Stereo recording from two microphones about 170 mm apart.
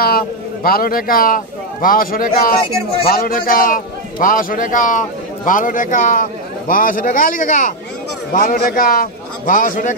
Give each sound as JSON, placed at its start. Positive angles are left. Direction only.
{"t": 0.7, "sound": "a man's voice", "side_deg": 60}